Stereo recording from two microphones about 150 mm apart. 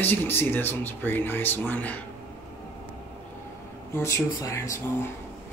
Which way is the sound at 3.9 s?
20° left (ahead or behind).